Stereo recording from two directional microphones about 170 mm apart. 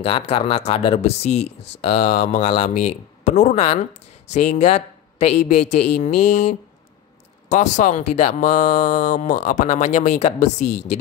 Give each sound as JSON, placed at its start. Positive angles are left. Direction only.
{"t": 0.0, "sound": "speech", "side_deg": 35}